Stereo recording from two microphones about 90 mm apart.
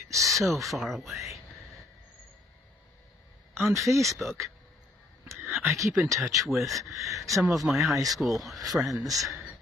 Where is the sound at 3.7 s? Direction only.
35° right (ahead or behind).